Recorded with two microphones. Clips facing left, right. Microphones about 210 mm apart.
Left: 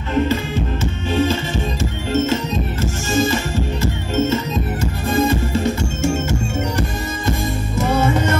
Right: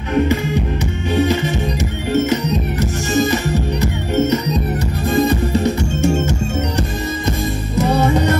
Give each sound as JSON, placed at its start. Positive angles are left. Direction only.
{"t": 0.1, "sound": "music", "side_deg": -15}